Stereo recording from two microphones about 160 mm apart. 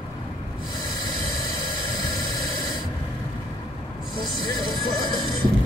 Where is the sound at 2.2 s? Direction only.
25° left (ahead or behind).